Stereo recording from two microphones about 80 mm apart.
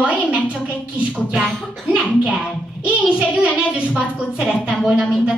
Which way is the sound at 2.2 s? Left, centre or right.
Centre.